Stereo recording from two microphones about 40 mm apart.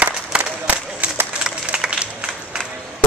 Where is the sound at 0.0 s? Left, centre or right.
Right.